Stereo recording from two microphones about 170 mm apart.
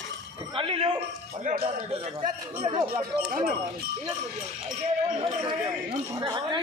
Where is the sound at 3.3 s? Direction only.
60° right (ahead or behind).